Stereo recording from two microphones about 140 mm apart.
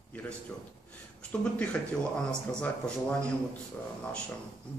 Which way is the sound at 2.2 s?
5° left (ahead or behind).